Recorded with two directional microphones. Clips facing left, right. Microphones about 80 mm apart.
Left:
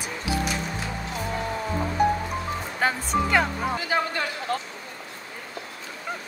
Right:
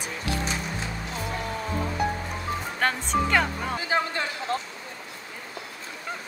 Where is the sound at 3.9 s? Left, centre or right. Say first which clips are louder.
Even; right.